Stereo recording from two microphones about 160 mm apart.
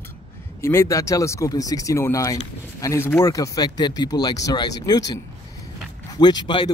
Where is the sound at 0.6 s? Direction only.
15° left (ahead or behind).